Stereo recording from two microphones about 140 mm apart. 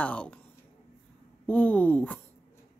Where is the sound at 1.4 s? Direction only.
10° left (ahead or behind).